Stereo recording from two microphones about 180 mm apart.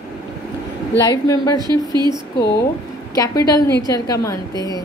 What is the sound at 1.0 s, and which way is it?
Speech, 20° left (ahead or behind).